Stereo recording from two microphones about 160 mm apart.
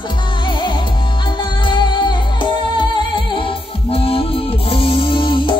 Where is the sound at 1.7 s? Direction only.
30° left (ahead or behind).